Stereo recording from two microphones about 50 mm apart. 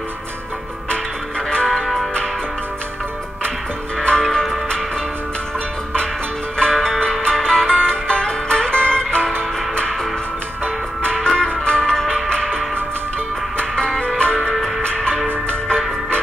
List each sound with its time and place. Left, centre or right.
1.5 s music: centre
4.0 s music: centre
6.7 s music: centre
11.2 s music: centre
14.0 s music: left